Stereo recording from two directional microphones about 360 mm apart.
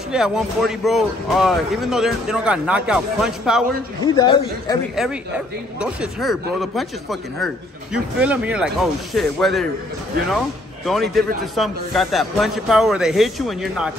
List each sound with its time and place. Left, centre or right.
0.1 s speech: centre
4.0 s a man's voice: centre
4.9 s speech: centre
10.9 s speech: centre